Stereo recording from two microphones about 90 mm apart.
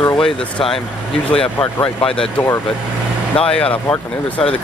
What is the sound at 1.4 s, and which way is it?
Speech, 75° left (ahead or behind).